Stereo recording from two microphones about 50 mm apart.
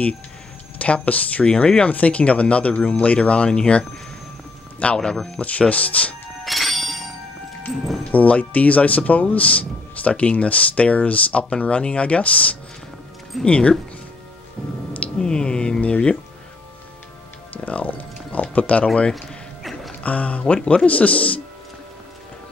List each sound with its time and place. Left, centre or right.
0.7 s speech: left
5.1 s speech: centre
5.4 s speech: left
6.4 s bell: centre
7.7 s speech: centre
8.0 s speech: left
15.1 s speech: centre
17.6 s a sound: left
19.1 s a sound: centre
20.0 s speech: left